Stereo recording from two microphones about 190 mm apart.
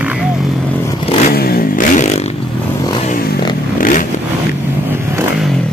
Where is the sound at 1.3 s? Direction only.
55° left (ahead or behind).